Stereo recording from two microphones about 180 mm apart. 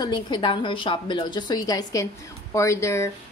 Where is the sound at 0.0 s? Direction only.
25° left (ahead or behind).